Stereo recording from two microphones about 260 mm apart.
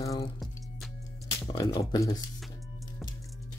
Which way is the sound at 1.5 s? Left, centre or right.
Centre.